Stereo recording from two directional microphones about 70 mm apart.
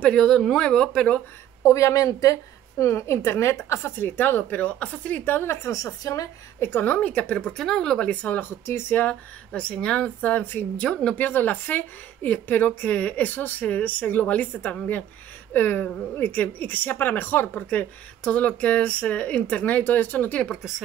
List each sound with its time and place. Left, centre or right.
0.0 s speech: centre
1.6 s a woman's voice: left
2.8 s speech: left
5.7 s a woman's voice: left
6.6 s speech: left
7.4 s speech: centre
8.1 s speech: left
8.6 s speech: left
9.5 s speech: centre
10.8 s speech: centre